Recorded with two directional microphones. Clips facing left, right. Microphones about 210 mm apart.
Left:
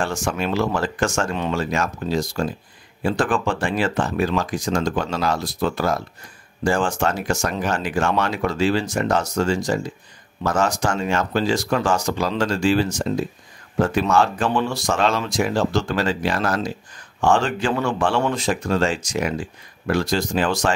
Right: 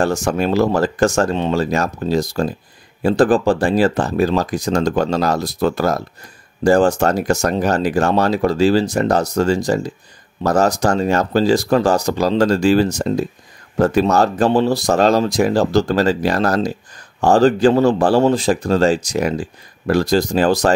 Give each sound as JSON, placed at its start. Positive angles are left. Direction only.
{"t": 0.0, "sound": "speech", "side_deg": -40}